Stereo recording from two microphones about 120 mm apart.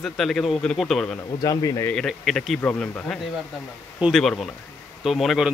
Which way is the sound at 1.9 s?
5° left (ahead or behind).